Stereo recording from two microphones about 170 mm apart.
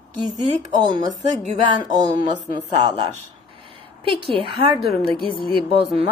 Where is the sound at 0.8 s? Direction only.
25° right (ahead or behind).